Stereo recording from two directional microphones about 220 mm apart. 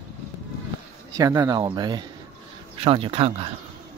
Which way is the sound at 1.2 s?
15° right (ahead or behind).